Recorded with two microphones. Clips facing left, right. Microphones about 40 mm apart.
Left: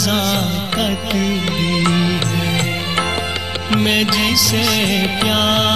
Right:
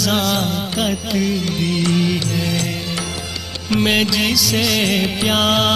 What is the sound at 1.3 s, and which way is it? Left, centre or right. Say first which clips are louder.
Music: left 2 dB; left.